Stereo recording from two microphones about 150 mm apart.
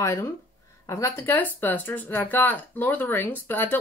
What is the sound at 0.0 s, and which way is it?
Speech, 20° left (ahead or behind).